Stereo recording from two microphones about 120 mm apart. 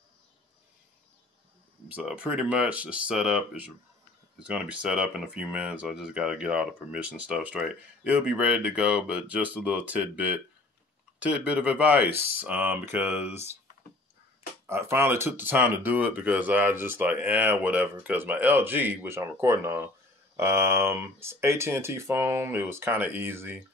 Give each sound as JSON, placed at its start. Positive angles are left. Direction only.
{"t": 1.9, "sound": "speech", "side_deg": -10}
{"t": 14.7, "sound": "speech", "side_deg": -20}